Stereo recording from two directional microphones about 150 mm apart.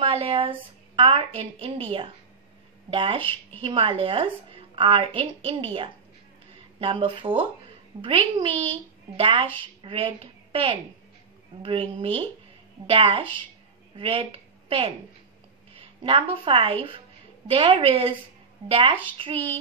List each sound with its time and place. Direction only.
0.0 s a woman's voice: 40° right (ahead or behind)